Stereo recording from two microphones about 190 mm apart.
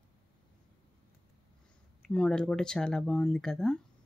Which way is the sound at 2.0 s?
5° left (ahead or behind).